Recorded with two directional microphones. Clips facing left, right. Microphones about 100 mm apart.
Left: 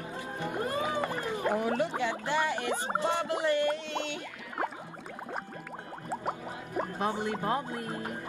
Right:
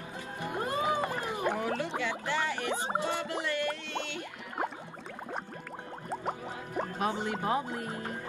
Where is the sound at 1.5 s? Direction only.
20° left (ahead or behind).